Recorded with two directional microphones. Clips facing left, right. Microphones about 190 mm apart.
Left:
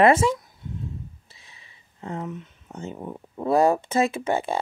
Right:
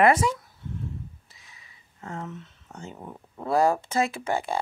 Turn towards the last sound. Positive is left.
turn(degrees=20)  # may be behind; listen again after turning